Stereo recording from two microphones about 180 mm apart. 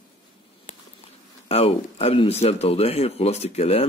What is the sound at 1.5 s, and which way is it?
Speech, 35° left (ahead or behind).